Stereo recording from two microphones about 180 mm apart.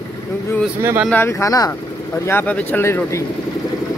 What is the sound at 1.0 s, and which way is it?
Speech, 15° left (ahead or behind).